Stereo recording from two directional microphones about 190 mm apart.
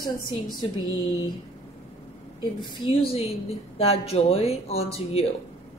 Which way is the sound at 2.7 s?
30° left (ahead or behind).